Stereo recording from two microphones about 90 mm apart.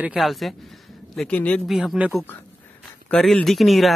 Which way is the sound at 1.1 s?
10° left (ahead or behind).